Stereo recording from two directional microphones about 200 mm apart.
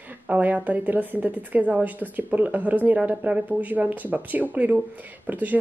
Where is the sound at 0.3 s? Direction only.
10° right (ahead or behind).